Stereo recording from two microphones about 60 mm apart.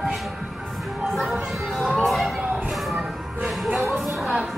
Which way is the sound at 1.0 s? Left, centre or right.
Centre.